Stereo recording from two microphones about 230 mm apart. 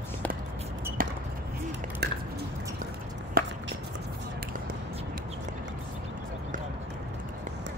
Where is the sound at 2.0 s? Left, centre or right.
Right.